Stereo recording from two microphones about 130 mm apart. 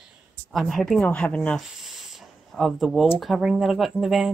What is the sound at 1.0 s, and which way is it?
Speech, 10° left (ahead or behind).